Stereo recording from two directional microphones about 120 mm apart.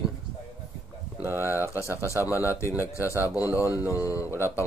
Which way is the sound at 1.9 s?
25° left (ahead or behind).